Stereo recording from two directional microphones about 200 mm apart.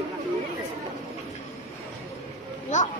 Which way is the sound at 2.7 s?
35° left (ahead or behind).